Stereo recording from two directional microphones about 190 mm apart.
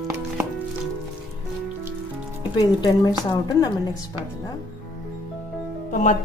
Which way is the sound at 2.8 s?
20° left (ahead or behind).